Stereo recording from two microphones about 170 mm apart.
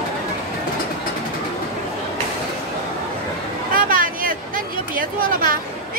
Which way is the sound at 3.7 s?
55° right (ahead or behind).